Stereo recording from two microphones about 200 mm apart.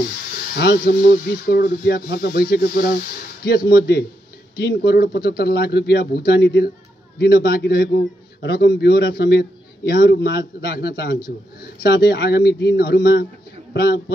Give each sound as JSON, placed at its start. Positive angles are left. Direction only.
{"t": 0.6, "sound": "a man's voice", "side_deg": 55}